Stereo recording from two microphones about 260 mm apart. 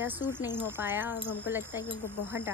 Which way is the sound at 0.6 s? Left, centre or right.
Centre.